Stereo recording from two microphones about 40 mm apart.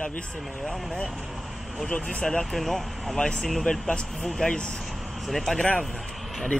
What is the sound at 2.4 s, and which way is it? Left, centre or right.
Speech, centre.